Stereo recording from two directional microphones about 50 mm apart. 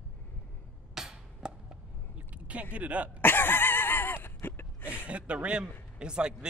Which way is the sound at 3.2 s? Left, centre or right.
Left.